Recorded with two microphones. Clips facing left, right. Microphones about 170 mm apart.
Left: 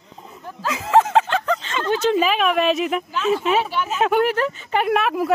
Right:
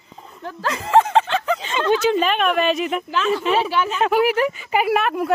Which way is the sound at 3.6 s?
90° right.